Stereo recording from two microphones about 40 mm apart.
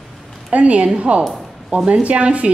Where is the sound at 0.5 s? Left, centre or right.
Right.